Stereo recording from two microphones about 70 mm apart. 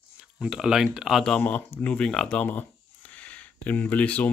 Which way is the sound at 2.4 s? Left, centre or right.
Left.